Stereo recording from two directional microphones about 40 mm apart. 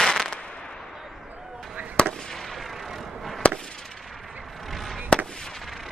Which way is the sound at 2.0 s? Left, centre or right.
Centre.